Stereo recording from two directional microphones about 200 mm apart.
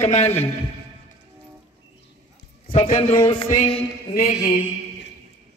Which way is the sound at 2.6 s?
45° left (ahead or behind).